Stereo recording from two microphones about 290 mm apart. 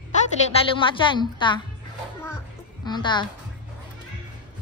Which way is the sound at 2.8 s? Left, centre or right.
Centre.